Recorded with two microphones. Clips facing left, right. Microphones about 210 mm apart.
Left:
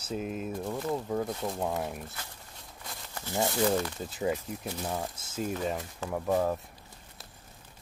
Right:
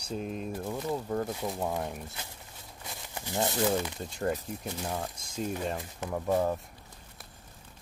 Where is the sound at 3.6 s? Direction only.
Centre (ahead or behind).